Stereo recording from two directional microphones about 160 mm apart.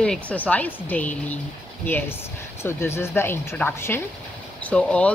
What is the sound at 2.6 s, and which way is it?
Speech, 15° left (ahead or behind).